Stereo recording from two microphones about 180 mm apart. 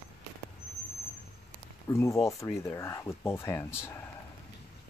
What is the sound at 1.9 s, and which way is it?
Speech, 15° left (ahead or behind).